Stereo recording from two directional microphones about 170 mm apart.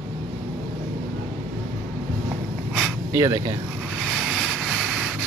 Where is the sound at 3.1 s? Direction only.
20° right (ahead or behind).